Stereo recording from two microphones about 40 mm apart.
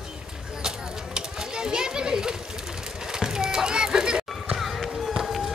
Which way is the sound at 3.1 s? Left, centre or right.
Centre.